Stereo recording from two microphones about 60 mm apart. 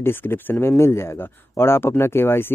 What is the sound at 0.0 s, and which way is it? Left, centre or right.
Speech, left.